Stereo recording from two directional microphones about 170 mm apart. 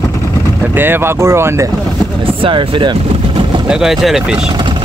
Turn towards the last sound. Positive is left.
turn(degrees=0)  # may be behind; listen again after turning